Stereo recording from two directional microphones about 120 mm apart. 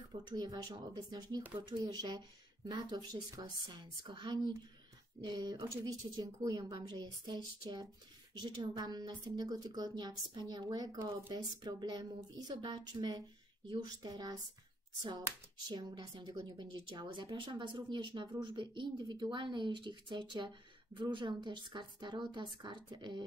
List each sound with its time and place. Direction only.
0.1 s a woman's voice: 35° right (ahead or behind)
15.7 s a woman's voice: 35° right (ahead or behind)